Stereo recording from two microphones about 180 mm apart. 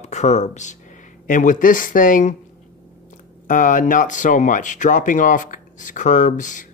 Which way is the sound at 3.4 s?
45° left (ahead or behind).